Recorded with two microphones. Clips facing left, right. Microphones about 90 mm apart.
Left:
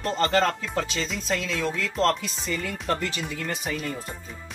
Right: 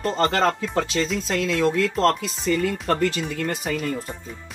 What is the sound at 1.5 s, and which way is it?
Speech, centre (ahead or behind).